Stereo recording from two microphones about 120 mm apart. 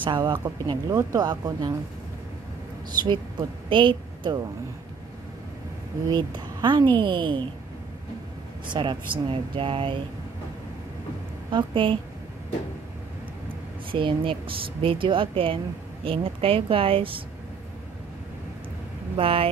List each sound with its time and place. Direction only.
0.0 s speech: 40° right (ahead or behind)
3.1 s a woman's voice: 40° right (ahead or behind)
6.0 s a woman's voice: 40° right (ahead or behind)
8.7 s speech: 40° right (ahead or behind)
11.5 s speech: 45° right (ahead or behind)
13.9 s speech: 45° right (ahead or behind)
19.1 s speech: 50° right (ahead or behind)